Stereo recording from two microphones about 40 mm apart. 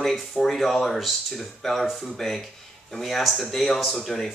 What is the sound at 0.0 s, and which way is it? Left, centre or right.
Speech, centre.